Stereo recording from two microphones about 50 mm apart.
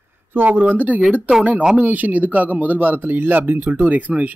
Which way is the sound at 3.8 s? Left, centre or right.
Right.